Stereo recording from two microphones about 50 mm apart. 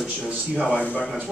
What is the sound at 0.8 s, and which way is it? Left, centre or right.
Speech, left.